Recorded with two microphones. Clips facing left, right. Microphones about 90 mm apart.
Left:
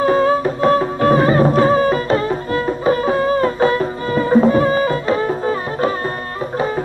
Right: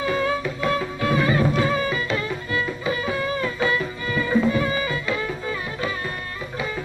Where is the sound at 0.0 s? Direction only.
40° left (ahead or behind).